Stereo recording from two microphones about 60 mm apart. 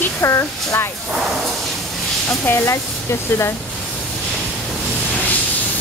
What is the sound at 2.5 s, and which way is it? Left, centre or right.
Speech, left.